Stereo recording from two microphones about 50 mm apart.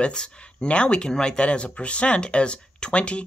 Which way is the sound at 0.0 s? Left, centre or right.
Centre.